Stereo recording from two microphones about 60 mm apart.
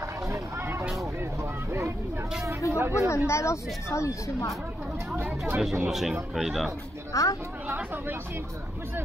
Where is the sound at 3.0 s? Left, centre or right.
Left.